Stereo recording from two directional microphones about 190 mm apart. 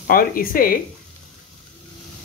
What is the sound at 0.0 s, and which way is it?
Speech, 50° left (ahead or behind).